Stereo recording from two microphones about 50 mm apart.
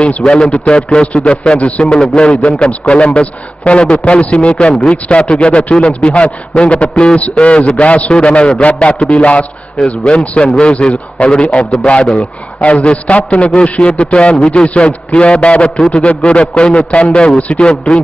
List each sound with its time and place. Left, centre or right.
0.3 s a man's voice: centre
1.0 s a man's voice: left